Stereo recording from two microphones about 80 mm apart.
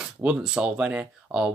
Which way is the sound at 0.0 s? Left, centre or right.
Centre.